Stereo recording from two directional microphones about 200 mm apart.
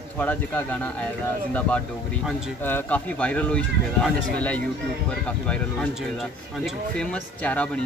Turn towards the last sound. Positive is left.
turn(degrees=5)  # may be behind; listen again after turning